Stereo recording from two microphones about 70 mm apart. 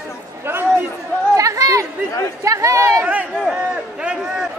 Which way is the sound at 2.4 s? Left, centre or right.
Right.